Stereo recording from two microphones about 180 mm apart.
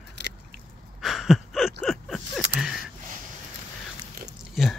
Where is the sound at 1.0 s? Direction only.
Centre (ahead or behind).